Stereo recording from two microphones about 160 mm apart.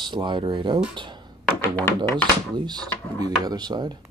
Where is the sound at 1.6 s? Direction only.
15° left (ahead or behind).